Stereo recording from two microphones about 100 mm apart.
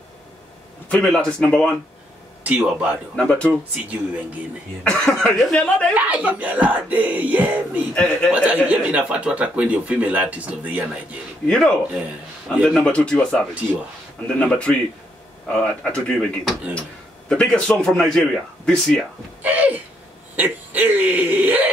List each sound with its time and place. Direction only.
0.8 s a man's voice: 10° left (ahead or behind)
2.4 s speech: 15° right (ahead or behind)
3.2 s a man's voice: 10° left (ahead or behind)
3.8 s speech: 15° right (ahead or behind)
4.8 s a man's voice: 10° left (ahead or behind)
5.9 s speech: 15° right (ahead or behind)
7.9 s a man's voice: 10° left (ahead or behind)
8.3 s speech: 15° right (ahead or behind)
11.4 s a man's voice: 10° left (ahead or behind)
17.3 s a man's voice: 5° left (ahead or behind)
19.4 s a sound: 15° right (ahead or behind)
20.3 s speech: 15° right (ahead or behind)